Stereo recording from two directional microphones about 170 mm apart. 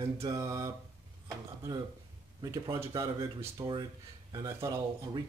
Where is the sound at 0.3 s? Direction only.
20° right (ahead or behind).